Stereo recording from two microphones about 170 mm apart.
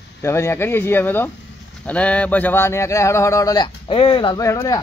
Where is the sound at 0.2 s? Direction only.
15° left (ahead or behind).